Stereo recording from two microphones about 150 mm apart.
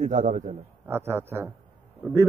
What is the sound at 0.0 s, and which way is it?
Speech, 55° right (ahead or behind).